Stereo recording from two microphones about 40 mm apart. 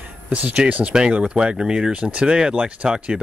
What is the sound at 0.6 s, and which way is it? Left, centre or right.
Speech, right.